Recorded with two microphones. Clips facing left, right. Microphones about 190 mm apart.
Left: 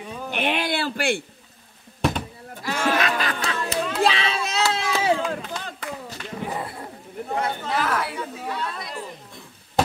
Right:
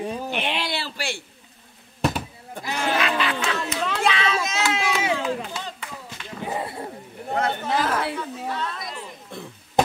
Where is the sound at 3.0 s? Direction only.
40° left (ahead or behind).